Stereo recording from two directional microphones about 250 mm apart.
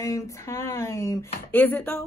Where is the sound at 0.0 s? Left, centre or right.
Centre.